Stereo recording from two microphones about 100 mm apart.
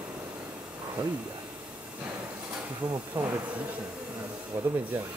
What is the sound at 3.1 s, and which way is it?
Speech, 15° right (ahead or behind).